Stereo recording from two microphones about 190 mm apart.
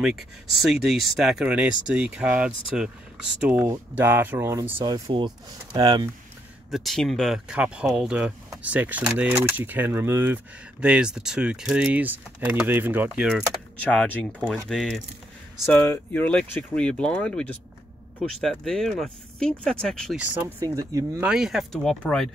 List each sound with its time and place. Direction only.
0.0 s speech: centre (ahead or behind); by 6.0 s 20° right (ahead or behind)
6.7 s speech: centre (ahead or behind)
13.9 s speech: 5° left (ahead or behind)
15.6 s speech: 10° left (ahead or behind)
20.2 s speech: 15° right (ahead or behind)
21.3 s speech: centre (ahead or behind)